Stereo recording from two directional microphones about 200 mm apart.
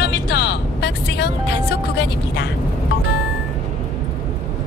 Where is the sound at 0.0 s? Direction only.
55° left (ahead or behind).